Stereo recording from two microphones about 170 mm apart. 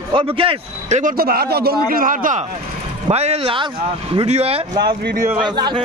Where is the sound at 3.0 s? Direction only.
40° right (ahead or behind).